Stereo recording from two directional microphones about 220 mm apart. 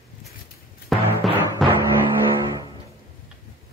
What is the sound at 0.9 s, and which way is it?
Music, centre (ahead or behind).